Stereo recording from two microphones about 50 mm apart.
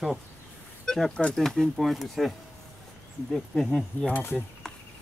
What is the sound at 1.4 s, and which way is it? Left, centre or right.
Speech, centre.